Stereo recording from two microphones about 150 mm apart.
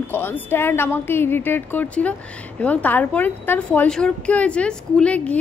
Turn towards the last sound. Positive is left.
turn(degrees=10)  # may be behind; listen again after turning